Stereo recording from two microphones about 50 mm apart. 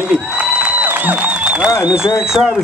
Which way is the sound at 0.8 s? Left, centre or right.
Right.